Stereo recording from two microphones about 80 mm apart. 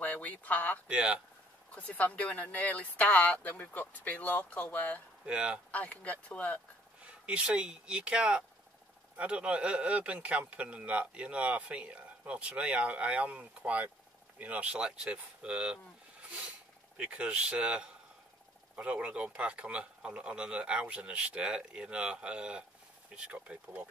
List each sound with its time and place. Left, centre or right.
0.0 s speech: centre
0.8 s speech: centre
1.8 s speech: centre
5.2 s speech: centre
5.7 s speech: centre
7.0 s speech: centre